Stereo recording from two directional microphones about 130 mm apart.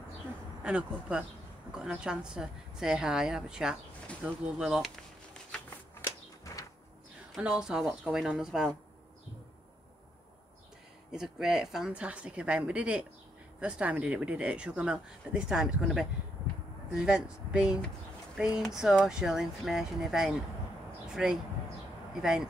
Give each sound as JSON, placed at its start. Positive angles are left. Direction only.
{"t": 0.7, "sound": "a woman's voice", "side_deg": -10}
{"t": 5.9, "sound": "a sound", "side_deg": 25}
{"t": 7.3, "sound": "a woman's voice", "side_deg": -5}
{"t": 11.1, "sound": "a woman's voice", "side_deg": -5}